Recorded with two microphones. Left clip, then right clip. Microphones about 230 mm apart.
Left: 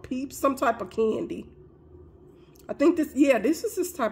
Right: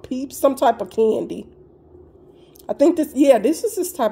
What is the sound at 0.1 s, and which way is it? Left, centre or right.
Speech, centre.